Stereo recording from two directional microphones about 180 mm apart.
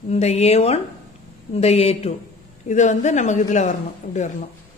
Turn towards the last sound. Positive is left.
turn(degrees=40)  # may be behind; listen again after turning